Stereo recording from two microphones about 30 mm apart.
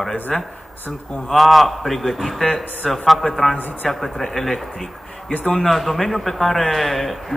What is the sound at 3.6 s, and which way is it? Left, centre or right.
Speech, left.